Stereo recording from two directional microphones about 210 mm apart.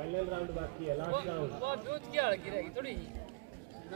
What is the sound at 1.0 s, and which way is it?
Speech, 50° right (ahead or behind).